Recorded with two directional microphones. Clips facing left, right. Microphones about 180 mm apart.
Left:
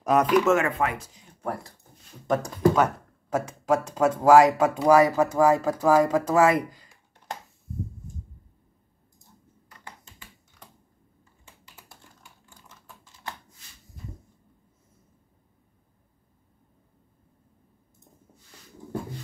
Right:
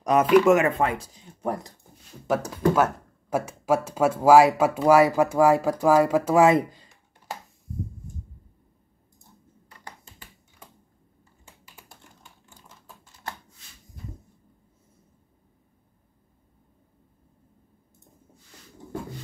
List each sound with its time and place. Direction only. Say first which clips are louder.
0.0 s speech: right 3 dB; centre (ahead or behind); by 1.2 s 30° right (ahead or behind)
1.4 s speech: right 3 dB; 20° right (ahead or behind)
2.2 s speech: left 1 dB; 5° right (ahead or behind); by 6.9 s 25° right (ahead or behind)